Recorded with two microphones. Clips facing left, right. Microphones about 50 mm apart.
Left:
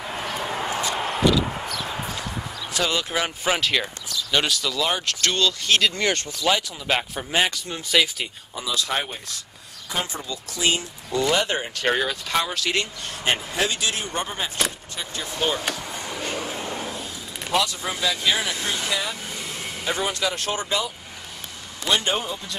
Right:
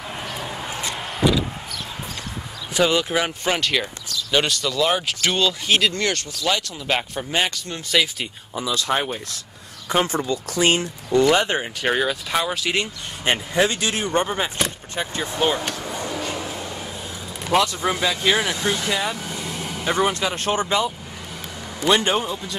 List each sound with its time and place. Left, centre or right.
0.0 s a sound: centre
0.5 s a sound: left
1.2 s vehicle: centre
2.7 s speech: centre
6.0 s speech: centre
8.9 s speech: centre
9.8 s speech: right
11.4 s speech: centre
13.6 s speech: right
17.5 s speech: right
22.1 s speech: centre